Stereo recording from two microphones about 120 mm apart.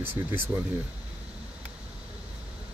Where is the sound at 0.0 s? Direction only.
15° right (ahead or behind).